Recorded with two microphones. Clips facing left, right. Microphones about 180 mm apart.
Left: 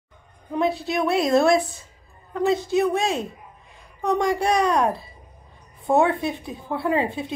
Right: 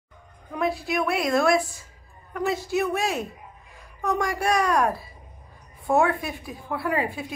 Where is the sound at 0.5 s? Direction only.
25° left (ahead or behind).